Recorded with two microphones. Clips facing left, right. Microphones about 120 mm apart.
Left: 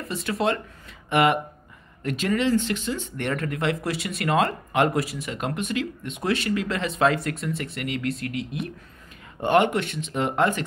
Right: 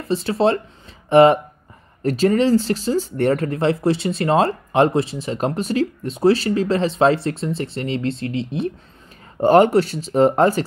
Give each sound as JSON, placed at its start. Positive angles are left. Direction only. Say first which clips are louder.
{"t": 0.1, "sound": "speech", "louder": "right 7 dB", "side_deg": -30}